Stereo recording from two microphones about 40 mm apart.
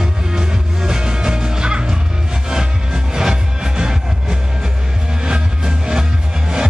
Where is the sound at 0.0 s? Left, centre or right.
Centre.